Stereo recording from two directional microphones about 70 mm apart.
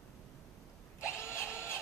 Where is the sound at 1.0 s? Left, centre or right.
Left.